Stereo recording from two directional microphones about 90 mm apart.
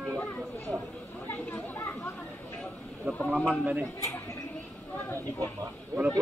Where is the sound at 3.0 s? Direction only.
25° right (ahead or behind).